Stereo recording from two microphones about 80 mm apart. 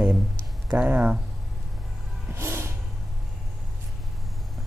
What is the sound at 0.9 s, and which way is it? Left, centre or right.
Speech, centre.